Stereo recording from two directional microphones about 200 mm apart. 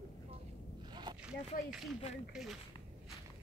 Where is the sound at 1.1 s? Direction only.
20° right (ahead or behind).